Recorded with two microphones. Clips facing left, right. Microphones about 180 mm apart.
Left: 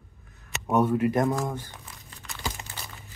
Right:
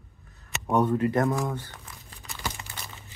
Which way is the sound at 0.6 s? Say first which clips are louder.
Left 1 dB; 10° left (ahead or behind).